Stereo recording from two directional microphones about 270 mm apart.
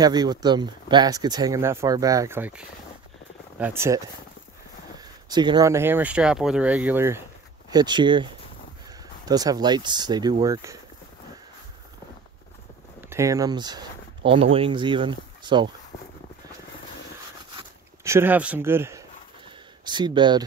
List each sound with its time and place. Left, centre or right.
0.0 s speech: centre
13.1 s speech: centre
17.6 s a sound: centre
19.8 s speech: centre